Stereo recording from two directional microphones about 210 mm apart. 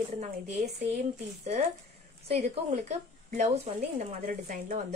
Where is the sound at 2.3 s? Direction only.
30° right (ahead or behind).